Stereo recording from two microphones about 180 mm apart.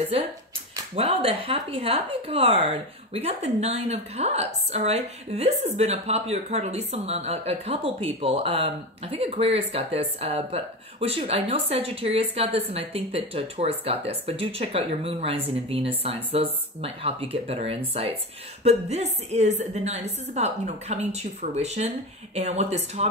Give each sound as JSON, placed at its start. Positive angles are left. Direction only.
{"t": 0.9, "sound": "speech", "side_deg": -30}